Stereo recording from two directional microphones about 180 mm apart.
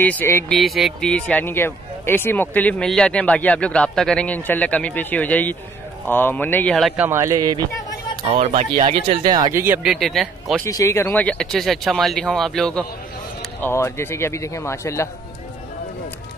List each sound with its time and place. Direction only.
0.0 s speech: 10° left (ahead or behind)
0.6 s speech: centre (ahead or behind)
7.0 s speech: 15° right (ahead or behind)
8.2 s speech: 35° right (ahead or behind); by 9.8 s 15° right (ahead or behind)
9.8 s speech: centre (ahead or behind)
10.7 s speech: 15° left (ahead or behind)
13.6 s speech: 15° left (ahead or behind)